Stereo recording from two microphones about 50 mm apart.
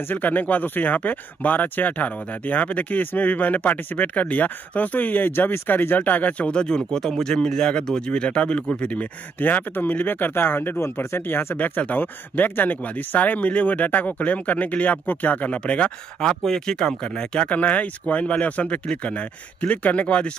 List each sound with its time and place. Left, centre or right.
0.1 s speech: left
9.4 s speech: left
10.8 s speech: left
11.5 s speech: left